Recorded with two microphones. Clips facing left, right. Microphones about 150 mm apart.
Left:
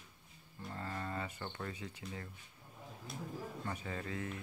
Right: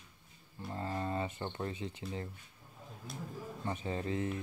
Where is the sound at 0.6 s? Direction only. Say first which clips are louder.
Right 5 dB; 20° right (ahead or behind).